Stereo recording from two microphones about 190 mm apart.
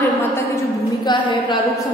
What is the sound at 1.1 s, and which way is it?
Speech, 25° left (ahead or behind).